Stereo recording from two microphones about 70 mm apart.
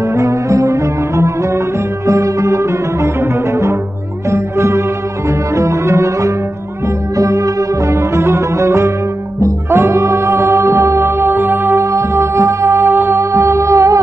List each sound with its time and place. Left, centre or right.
0.1 s music: right
4.3 s music: right
13.1 s music: right